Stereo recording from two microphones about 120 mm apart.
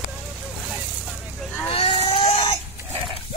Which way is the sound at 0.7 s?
Centre (ahead or behind).